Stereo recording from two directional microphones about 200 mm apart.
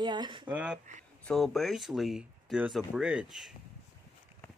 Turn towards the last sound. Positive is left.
turn(degrees=0)  # may be behind; listen again after turning